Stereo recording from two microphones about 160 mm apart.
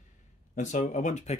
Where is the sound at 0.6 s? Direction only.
50° left (ahead or behind).